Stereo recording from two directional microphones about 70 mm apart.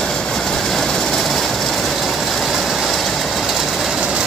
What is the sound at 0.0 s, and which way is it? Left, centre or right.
Vehicle, centre.